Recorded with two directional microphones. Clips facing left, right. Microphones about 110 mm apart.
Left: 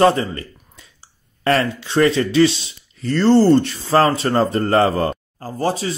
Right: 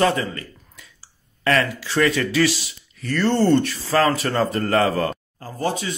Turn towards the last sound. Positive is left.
turn(degrees=35)  # may be behind; listen again after turning